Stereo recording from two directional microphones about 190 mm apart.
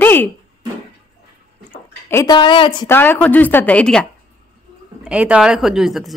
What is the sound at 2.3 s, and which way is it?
Speech, 25° left (ahead or behind).